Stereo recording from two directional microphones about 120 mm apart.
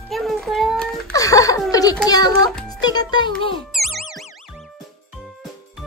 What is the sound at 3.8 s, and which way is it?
Music, centre (ahead or behind).